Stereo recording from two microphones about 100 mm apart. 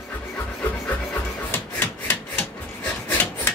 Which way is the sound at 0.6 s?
20° left (ahead or behind).